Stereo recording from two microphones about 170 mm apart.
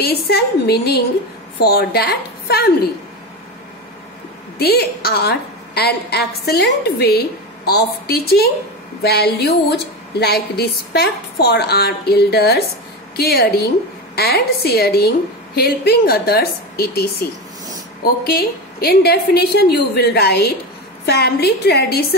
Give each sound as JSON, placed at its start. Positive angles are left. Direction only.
{"t": 0.0, "sound": "a woman's voice", "side_deg": 70}
{"t": 4.6, "sound": "a woman's voice", "side_deg": 70}